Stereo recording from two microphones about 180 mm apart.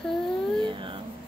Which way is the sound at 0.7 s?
25° right (ahead or behind).